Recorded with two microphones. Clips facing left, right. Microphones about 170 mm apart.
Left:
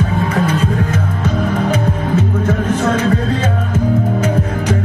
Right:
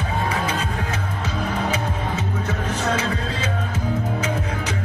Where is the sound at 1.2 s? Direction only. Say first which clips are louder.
Left 8 dB; 50° left (ahead or behind).